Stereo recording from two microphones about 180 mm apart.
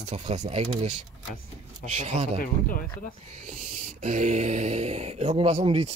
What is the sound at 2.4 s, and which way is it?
Speech, 50° left (ahead or behind).